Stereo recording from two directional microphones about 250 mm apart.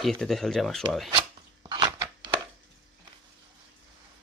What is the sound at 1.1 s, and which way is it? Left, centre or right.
Chopping, centre.